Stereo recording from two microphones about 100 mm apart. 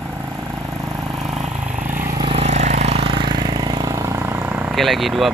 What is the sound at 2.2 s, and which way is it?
Vehicle, 80° right.